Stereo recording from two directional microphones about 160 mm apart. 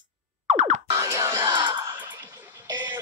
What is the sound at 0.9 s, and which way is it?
Crowd, 15° right (ahead or behind).